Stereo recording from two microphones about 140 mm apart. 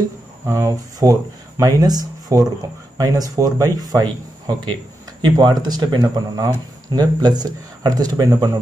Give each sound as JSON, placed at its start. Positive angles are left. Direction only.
{"t": 0.5, "sound": "speech", "side_deg": -20}